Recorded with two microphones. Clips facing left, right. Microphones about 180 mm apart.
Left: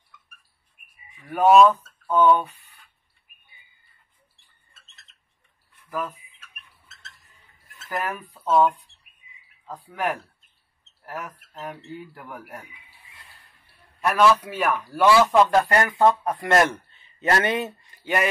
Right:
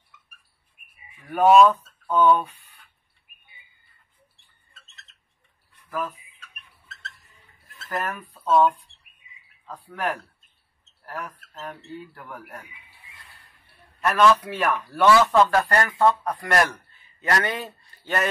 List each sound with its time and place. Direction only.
1.1 s speech: centre (ahead or behind)
5.9 s speech: 10° left (ahead or behind)
8.1 s a man's voice: 10° left (ahead or behind)
11.2 s a man's voice: 10° left (ahead or behind)
14.0 s a man's voice: 10° left (ahead or behind)